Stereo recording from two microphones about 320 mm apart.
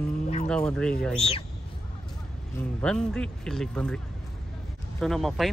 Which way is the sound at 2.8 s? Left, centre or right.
Centre.